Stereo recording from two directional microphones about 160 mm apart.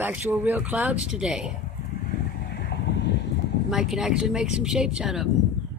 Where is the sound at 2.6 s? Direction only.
90° left.